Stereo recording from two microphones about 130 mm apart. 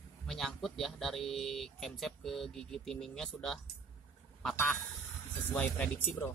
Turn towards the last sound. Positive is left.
turn(degrees=15)  # may be behind; listen again after turning